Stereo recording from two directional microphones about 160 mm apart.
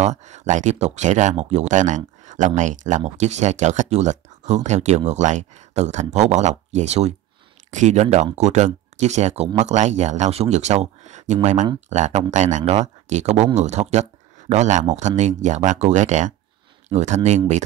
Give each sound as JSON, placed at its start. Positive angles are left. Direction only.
{"t": 0.0, "sound": "speech", "side_deg": -45}